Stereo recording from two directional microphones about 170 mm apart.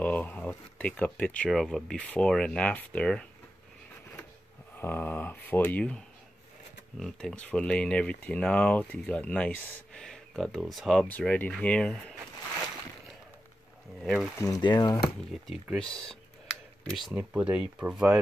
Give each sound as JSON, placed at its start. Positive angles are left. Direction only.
{"t": 0.0, "sound": "speech", "side_deg": 10}
{"t": 4.7, "sound": "speech", "side_deg": 10}
{"t": 14.0, "sound": "speech", "side_deg": 0}
{"t": 14.4, "sound": "speech", "side_deg": 20}
{"t": 15.4, "sound": "speech", "side_deg": 0}